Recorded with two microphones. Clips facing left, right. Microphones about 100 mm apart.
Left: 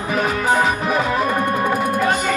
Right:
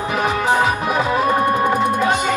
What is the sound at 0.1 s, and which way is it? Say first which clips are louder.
Music: even; 20° right (ahead or behind).